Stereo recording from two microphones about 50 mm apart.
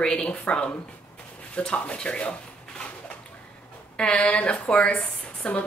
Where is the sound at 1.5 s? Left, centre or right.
Left.